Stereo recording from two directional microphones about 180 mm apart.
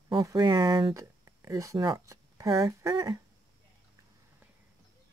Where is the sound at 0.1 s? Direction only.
20° right (ahead or behind).